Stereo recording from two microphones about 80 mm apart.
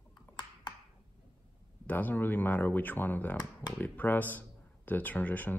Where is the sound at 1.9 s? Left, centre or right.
Left.